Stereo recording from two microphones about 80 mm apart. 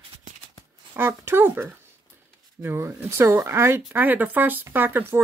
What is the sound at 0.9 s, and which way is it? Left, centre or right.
Speech, right.